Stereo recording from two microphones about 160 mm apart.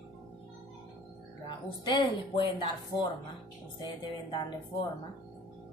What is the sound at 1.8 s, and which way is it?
Speech, 30° left (ahead or behind).